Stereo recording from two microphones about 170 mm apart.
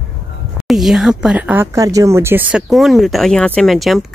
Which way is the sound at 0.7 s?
Centre (ahead or behind).